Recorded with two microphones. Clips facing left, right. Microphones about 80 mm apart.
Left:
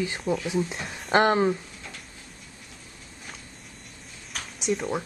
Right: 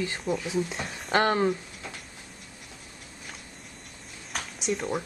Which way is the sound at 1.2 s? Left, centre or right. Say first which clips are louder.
Left 2 dB; centre.